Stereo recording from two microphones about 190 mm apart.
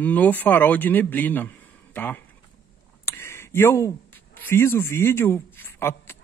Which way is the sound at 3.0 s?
15° left (ahead or behind).